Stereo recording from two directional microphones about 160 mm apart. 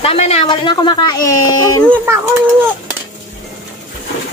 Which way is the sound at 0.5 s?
30° left (ahead or behind).